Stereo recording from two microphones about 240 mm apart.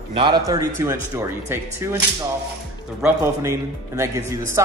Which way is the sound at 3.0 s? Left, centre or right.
Centre.